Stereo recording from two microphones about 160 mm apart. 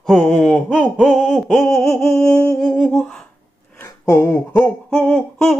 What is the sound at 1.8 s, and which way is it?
Humming, 15° left (ahead or behind).